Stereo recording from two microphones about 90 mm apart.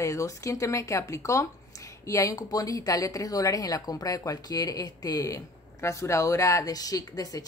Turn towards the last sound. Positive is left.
turn(degrees=45)  # may be behind; listen again after turning